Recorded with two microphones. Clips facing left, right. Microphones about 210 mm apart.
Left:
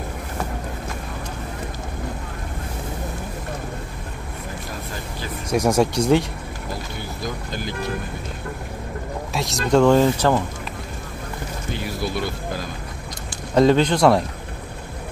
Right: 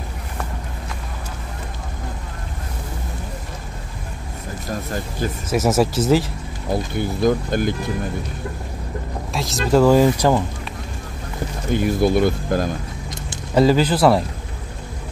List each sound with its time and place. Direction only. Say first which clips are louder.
5.5 s speech: even; 5° right (ahead or behind)
6.7 s speech: right 11 dB; 55° right (ahead or behind)
9.3 s speech: right 1 dB; centre (ahead or behind)
11.7 s speech: right 10 dB; 50° right (ahead or behind)
13.6 s speech: even; 5° right (ahead or behind)